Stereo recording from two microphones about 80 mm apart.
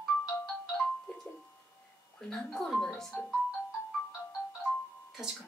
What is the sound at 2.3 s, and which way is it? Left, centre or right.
Speech, centre.